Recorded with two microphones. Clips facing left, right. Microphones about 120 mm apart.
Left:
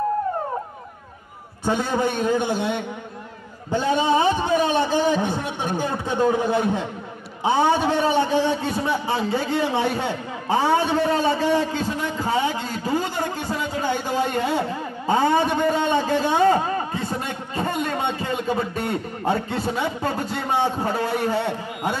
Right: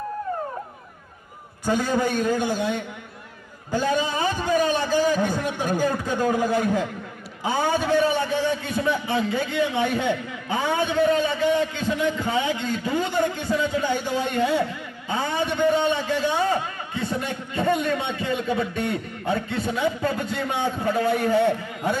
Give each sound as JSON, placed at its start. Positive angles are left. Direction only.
{"t": 1.6, "sound": "a man's voice", "side_deg": 20}
{"t": 2.5, "sound": "a woman's voice", "side_deg": -40}
{"t": 3.9, "sound": "a man's voice", "side_deg": 25}